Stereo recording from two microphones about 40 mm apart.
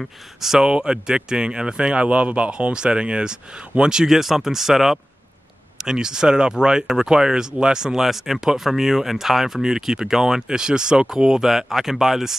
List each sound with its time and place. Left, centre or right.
0.0 s speech: centre
0.7 s speech: right
4.2 s speech: centre